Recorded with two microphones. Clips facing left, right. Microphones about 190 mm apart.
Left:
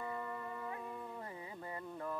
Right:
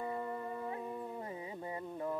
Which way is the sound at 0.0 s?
25° right (ahead or behind).